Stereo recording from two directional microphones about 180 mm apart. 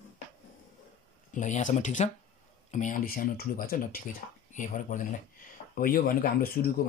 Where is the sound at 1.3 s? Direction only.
45° left (ahead or behind).